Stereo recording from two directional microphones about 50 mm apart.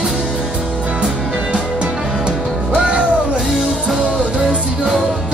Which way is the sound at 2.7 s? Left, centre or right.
Centre.